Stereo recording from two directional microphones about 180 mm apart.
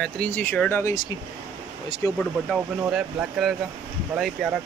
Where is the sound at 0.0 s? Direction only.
10° left (ahead or behind).